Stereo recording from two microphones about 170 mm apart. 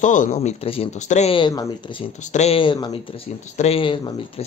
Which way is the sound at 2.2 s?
40° left (ahead or behind).